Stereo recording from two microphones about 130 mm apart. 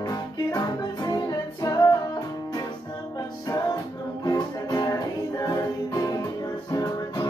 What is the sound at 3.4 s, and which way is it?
Music, 30° left (ahead or behind).